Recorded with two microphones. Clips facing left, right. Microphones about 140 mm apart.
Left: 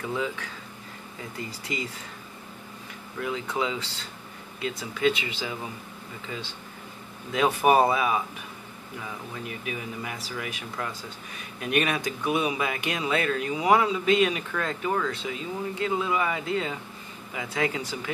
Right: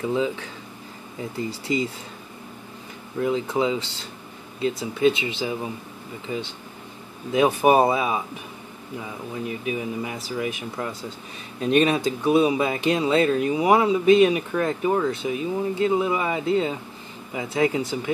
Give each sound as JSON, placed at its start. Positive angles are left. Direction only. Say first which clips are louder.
{"t": 0.1, "sound": "speech", "louder": "right 5 dB", "side_deg": -25}
{"t": 1.5, "sound": "speech", "louder": "right 10 dB", "side_deg": -25}
{"t": 3.2, "sound": "speech", "louder": "right 6 dB", "side_deg": -25}
{"t": 6.3, "sound": "speech", "louder": "right 8 dB", "side_deg": -15}
{"t": 9.3, "sound": "speech", "louder": "right 9 dB", "side_deg": -20}